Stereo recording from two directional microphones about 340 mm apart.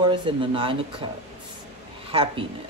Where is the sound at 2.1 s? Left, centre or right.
Centre.